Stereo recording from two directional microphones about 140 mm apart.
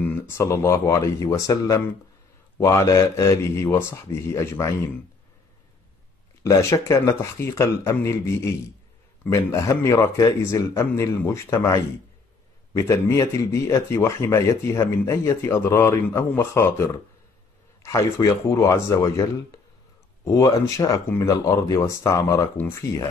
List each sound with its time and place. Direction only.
0.1 s speech: 20° left (ahead or behind)
6.4 s speech: 20° left (ahead or behind)